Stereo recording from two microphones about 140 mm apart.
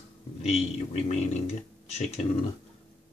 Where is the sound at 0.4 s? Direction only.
50° left (ahead or behind).